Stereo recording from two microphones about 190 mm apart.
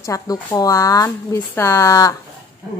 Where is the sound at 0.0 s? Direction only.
15° left (ahead or behind).